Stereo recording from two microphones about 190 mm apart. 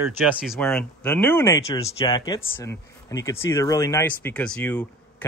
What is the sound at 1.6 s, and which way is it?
Speech, 30° left (ahead or behind).